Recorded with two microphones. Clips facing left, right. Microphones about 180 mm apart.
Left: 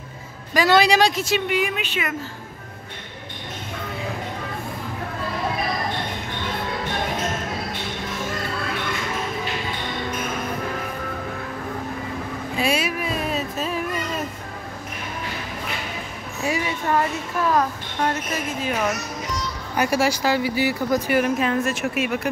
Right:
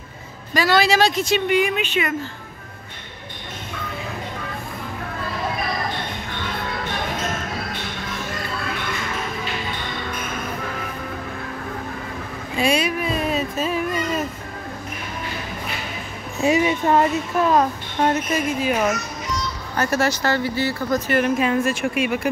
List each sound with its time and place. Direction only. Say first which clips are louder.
0.6 s a woman's voice: left 1 dB; 20° left (ahead or behind)
12.5 s a sound: right 3 dB; 5° left (ahead or behind)
16.4 s speech: right 6 dB; 20° right (ahead or behind)
19.7 s speech: even; 10° left (ahead or behind)
21.4 s a woman's voice: right 2 dB; centre (ahead or behind)